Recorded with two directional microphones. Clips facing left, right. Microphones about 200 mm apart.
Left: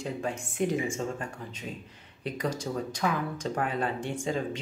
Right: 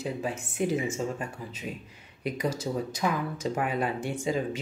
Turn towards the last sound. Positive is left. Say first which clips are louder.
# right 1 dB
turn(degrees=-10)  # may be behind; listen again after turning